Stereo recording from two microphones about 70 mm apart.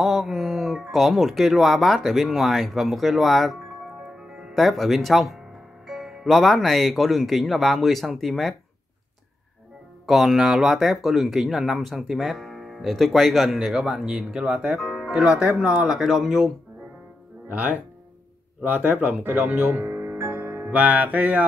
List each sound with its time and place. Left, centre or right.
0.0 s speech: centre
10.0 s speech: centre
17.5 s speech: right